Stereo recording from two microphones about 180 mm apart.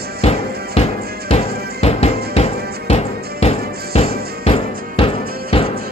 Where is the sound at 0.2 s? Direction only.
35° left (ahead or behind).